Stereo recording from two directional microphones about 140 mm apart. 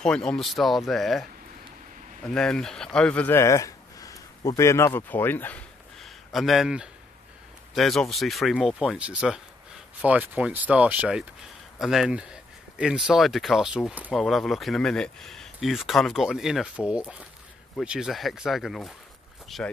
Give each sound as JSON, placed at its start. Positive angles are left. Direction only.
{"t": 0.0, "sound": "speech", "side_deg": 5}
{"t": 2.2, "sound": "speech", "side_deg": 5}
{"t": 5.9, "sound": "a sound", "side_deg": 0}
{"t": 7.7, "sound": "speech", "side_deg": 0}